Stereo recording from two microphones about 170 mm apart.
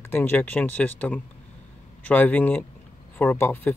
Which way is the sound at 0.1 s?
10° left (ahead or behind).